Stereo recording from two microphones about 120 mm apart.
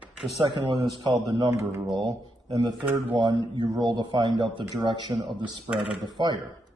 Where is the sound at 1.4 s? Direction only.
25° right (ahead or behind).